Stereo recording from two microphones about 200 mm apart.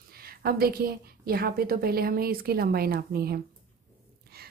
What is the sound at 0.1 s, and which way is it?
A woman's voice, 50° right (ahead or behind).